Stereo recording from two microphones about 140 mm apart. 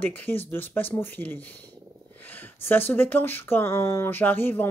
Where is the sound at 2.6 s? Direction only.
15° left (ahead or behind).